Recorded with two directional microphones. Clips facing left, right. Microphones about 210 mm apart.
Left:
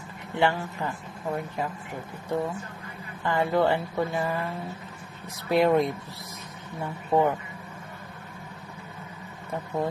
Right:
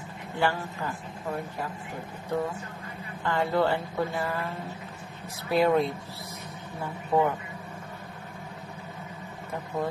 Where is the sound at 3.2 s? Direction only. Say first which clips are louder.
Left 2 dB; 15° left (ahead or behind).